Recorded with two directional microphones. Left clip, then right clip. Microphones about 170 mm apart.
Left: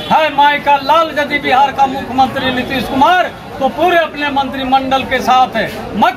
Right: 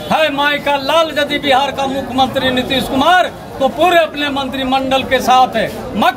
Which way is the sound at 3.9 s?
15° right (ahead or behind).